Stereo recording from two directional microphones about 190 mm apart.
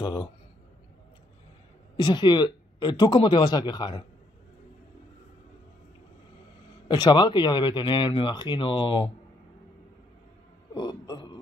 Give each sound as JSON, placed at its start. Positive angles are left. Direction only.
{"t": 0.0, "sound": "speech", "side_deg": 20}
{"t": 2.0, "sound": "speech", "side_deg": 25}
{"t": 6.9, "sound": "speech", "side_deg": 25}
{"t": 10.7, "sound": "speech", "side_deg": 20}